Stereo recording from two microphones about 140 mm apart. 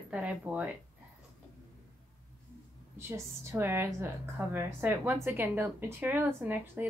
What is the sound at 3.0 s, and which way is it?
Speech, 15° right (ahead or behind).